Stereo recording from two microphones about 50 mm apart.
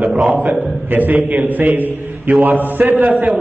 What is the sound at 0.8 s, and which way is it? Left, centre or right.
A man's voice, right.